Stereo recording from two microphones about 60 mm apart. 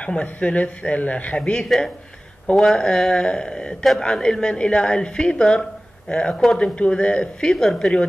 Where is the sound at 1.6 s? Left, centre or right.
Centre.